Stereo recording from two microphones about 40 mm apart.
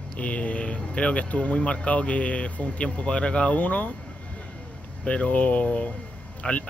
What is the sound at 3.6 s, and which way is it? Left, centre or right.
Speech, left.